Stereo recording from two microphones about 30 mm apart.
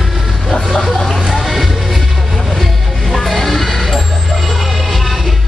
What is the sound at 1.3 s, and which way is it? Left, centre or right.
Music, centre.